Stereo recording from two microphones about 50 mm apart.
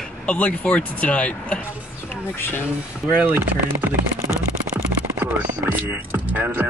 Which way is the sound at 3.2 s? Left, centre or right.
Right.